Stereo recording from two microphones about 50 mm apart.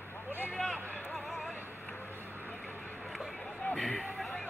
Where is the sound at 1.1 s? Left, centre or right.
Centre.